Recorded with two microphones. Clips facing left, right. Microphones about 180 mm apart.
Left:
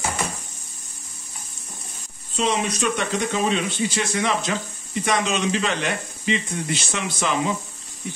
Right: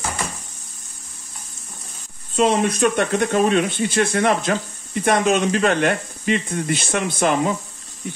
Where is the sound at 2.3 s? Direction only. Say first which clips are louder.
Right 6 dB; 55° right (ahead or behind).